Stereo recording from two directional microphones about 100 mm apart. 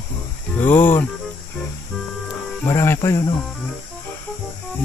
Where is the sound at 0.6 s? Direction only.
20° left (ahead or behind).